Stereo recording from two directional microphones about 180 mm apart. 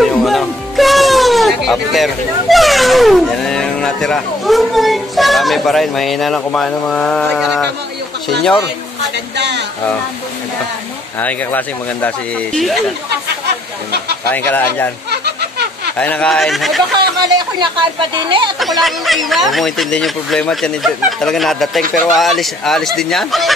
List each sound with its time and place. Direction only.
0.0 s music: centre (ahead or behind)
2.5 s speech: centre (ahead or behind)
9.4 s speech: 70° right (ahead or behind)
11.1 s speech: 10° left (ahead or behind)
14.3 s speech: 10° left (ahead or behind)
16.0 s speech: 5° left (ahead or behind)
17.2 s speech: 25° right (ahead or behind)
18.6 s speech: centre (ahead or behind)